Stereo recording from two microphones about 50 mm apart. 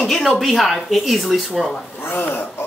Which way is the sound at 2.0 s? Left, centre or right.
Left.